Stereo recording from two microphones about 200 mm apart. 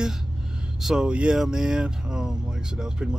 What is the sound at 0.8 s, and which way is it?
Speech, 5° right (ahead or behind).